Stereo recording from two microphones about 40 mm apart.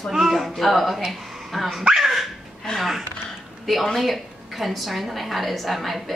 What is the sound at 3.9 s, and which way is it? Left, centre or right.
A woman's voice, centre.